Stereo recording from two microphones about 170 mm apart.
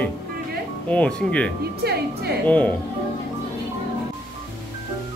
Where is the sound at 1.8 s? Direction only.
70° right (ahead or behind).